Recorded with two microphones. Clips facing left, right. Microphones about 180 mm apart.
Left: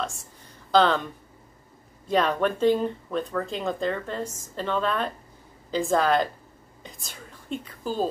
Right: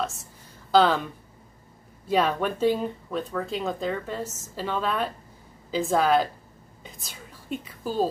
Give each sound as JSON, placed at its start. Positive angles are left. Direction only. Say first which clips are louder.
{"t": 0.7, "sound": "speech", "louder": "right 1 dB", "side_deg": -5}
{"t": 2.0, "sound": "a woman's voice", "louder": "left 1 dB", "side_deg": -5}